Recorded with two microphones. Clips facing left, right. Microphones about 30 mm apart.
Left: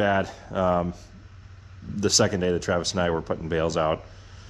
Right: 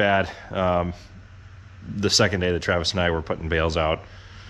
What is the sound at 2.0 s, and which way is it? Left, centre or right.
Speech, right.